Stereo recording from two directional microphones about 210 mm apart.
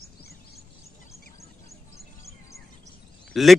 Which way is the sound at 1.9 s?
15° left (ahead or behind).